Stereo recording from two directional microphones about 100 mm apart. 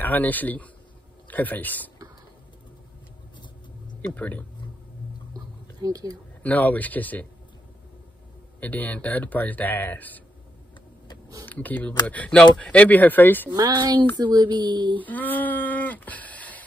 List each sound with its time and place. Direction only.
0.0 s speech: 15° left (ahead or behind)
4.0 s speech: 15° left (ahead or behind)
5.8 s speech: 35° right (ahead or behind)
6.4 s speech: 15° left (ahead or behind)
8.5 s speech: 15° left (ahead or behind)
11.4 s speech: 15° left (ahead or behind)
13.6 s speech: 45° right (ahead or behind)
15.0 s speech: 15° left (ahead or behind)